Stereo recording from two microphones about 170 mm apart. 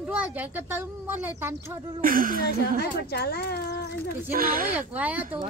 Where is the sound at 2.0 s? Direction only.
55° right (ahead or behind).